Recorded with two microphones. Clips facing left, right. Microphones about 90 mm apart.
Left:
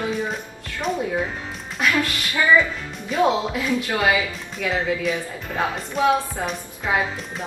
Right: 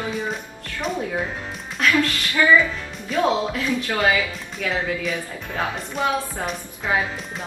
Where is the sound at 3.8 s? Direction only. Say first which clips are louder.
Even; 10° left (ahead or behind).